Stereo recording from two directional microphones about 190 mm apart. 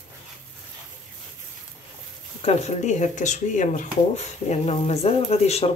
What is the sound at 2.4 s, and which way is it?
Speech, 35° left (ahead or behind).